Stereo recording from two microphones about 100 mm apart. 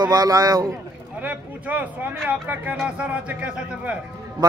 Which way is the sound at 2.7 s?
5° right (ahead or behind).